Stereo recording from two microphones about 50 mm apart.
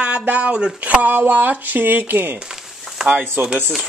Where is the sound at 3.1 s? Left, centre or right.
Right.